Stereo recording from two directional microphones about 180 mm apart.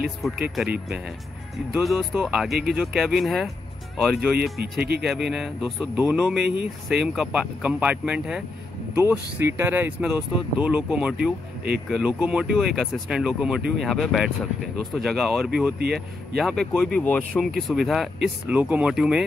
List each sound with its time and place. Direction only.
0.0 s speech: centre (ahead or behind)
1.7 s speech: centre (ahead or behind)
6.4 s speech: 65° right (ahead or behind)
6.9 s speech: 5° right (ahead or behind)